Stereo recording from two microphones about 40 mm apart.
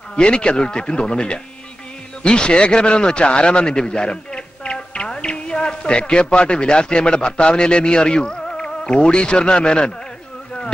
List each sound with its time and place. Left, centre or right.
0.1 s a man's voice: left